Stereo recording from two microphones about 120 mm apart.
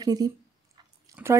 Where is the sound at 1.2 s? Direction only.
20° right (ahead or behind).